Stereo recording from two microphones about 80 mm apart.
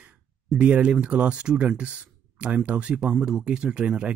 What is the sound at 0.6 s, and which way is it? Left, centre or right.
Speech, centre.